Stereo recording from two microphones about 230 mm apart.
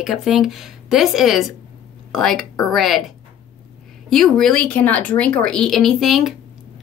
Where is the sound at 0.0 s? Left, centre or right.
Centre.